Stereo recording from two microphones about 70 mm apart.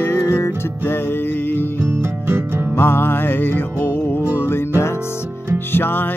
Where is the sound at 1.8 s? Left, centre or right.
Right.